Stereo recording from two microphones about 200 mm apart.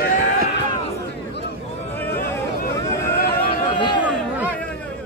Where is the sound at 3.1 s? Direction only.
45° left (ahead or behind).